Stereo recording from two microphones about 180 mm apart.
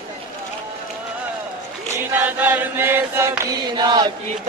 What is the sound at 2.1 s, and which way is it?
Chant, 10° right (ahead or behind).